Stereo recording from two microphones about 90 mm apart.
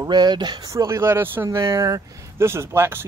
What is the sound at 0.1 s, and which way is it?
Speech, 55° right (ahead or behind).